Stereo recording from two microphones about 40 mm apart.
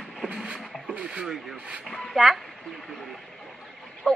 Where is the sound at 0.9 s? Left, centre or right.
Right.